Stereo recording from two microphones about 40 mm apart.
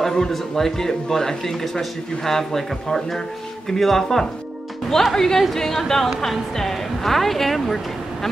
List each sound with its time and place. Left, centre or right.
0.0 s speech: centre